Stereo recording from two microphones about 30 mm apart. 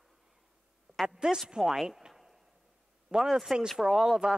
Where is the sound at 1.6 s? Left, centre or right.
Right.